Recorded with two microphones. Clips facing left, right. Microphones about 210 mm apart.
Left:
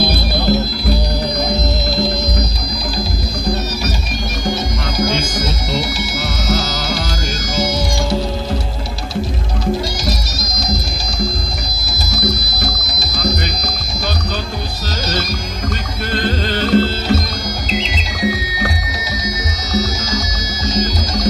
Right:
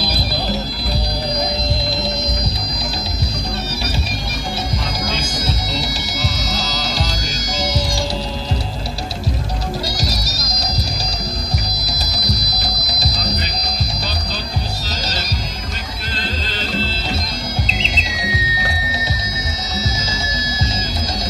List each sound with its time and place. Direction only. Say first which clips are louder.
6.8 s music: left 2 dB; 35° right (ahead or behind)
11.8 s music: left 6 dB; 35° right (ahead or behind)
16.2 s music: left 9 dB; 55° left (ahead or behind)